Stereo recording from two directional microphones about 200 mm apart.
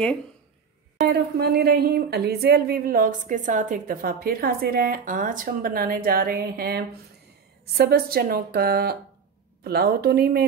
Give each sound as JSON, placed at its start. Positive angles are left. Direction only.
{"t": 1.0, "sound": "speech", "side_deg": -55}